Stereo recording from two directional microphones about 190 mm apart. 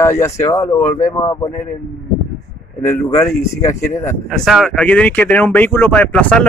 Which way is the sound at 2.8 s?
15° left (ahead or behind).